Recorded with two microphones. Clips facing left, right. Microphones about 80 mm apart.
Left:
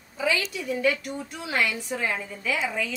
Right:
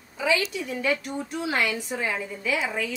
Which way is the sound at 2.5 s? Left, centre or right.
Centre.